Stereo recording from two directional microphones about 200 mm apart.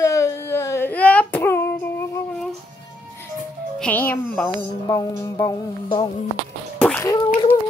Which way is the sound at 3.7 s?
5° left (ahead or behind).